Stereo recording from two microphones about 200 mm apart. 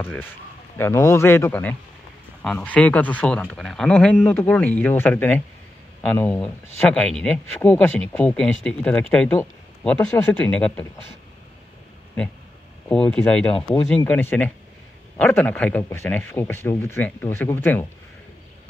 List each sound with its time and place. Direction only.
0.0 s speech: 10° left (ahead or behind)
12.8 s speech: 5° left (ahead or behind)
13.6 s speech: 25° left (ahead or behind)
13.8 s speech: 5° left (ahead or behind)